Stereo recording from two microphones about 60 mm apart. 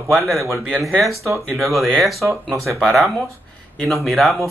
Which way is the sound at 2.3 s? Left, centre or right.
Right.